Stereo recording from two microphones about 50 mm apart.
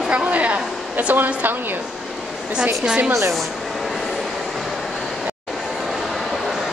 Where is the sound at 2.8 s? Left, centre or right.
Right.